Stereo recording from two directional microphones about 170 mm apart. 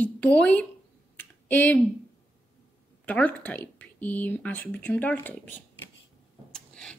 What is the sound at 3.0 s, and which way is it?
Speech, 10° left (ahead or behind).